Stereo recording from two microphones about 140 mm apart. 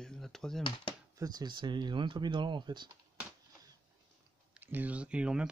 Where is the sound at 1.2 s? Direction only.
30° right (ahead or behind).